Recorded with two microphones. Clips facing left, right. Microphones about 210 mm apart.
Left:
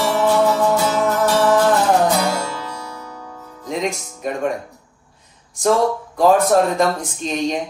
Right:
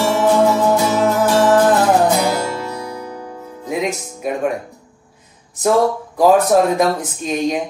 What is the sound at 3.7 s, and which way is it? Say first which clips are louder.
Music: right 2 dB; 5° right (ahead or behind).